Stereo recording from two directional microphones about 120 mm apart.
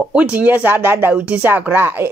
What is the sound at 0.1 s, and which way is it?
Speech, 10° right (ahead or behind).